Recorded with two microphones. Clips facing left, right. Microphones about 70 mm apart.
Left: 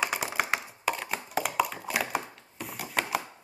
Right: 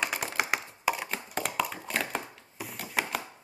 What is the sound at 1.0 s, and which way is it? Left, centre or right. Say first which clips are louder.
Hands: left 3 dB; centre.